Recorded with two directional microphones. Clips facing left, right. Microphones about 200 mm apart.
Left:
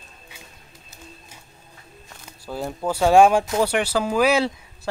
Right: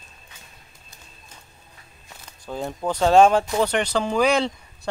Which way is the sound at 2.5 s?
5° left (ahead or behind).